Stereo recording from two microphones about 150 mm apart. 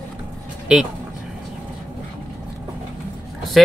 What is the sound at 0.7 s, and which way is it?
Speech, 5° right (ahead or behind).